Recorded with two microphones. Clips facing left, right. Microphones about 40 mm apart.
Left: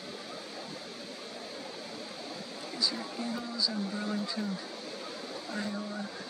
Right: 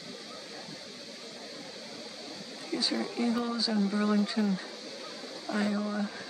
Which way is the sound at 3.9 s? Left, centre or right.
Centre.